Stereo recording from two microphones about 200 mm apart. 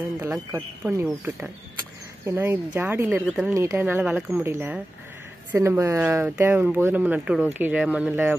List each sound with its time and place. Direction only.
0.2 s speech: 15° right (ahead or behind)